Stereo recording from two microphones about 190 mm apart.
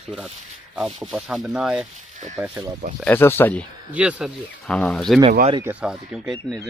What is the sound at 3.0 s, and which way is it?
Speech, 10° left (ahead or behind).